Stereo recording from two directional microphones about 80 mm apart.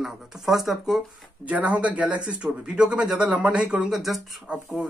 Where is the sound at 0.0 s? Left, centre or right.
Centre.